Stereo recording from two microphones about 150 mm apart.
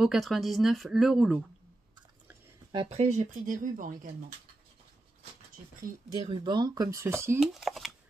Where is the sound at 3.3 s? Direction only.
60° right (ahead or behind).